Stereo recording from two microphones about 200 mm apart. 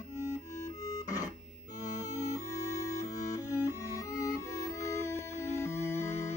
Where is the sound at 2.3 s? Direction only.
15° left (ahead or behind).